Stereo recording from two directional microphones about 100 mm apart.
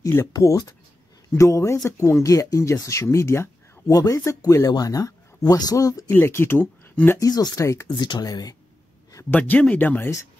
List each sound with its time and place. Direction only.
0.3 s speech: 35° left (ahead or behind)
6.0 s speech: 25° left (ahead or behind)
7.2 s speech: 40° left (ahead or behind)
8.0 s speech: 40° left (ahead or behind)
9.3 s speech: 15° left (ahead or behind)